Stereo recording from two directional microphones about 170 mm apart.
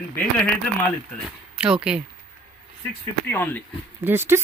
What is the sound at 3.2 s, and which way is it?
Speech, 10° left (ahead or behind).